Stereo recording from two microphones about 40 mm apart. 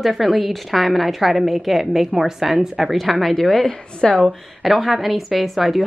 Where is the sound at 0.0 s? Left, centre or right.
Centre.